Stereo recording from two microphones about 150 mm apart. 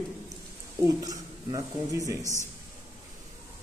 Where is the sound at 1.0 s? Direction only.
25° right (ahead or behind).